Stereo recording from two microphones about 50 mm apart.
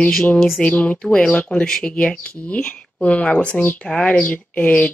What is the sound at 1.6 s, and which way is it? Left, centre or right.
Speech, centre.